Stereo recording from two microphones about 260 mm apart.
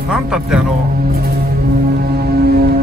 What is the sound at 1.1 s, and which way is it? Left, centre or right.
Music, right.